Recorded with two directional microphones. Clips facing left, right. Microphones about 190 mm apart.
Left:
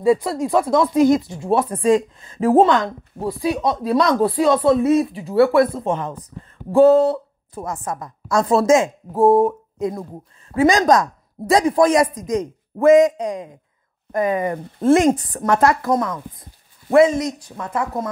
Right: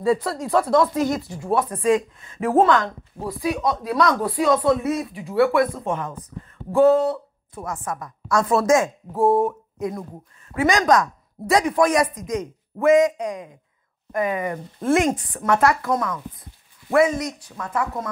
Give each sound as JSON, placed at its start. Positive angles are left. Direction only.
{"t": 0.0, "sound": "speech", "side_deg": 15}
{"t": 9.2, "sound": "speech", "side_deg": 35}